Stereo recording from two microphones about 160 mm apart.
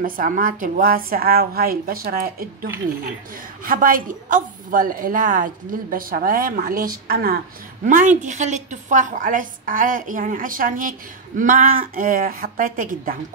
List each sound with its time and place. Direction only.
0.0 s a woman's voice: 60° right (ahead or behind)
3.6 s a woman's voice: 60° right (ahead or behind)
7.8 s a woman's voice: 50° right (ahead or behind)